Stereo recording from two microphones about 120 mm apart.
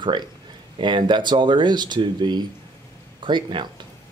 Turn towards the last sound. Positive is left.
turn(degrees=-40)  # may be behind; listen again after turning